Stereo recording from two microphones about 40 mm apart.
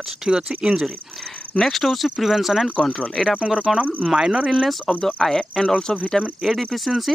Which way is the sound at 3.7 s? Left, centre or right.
Centre.